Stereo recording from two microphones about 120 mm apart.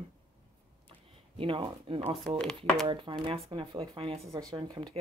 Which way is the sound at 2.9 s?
45° right (ahead or behind).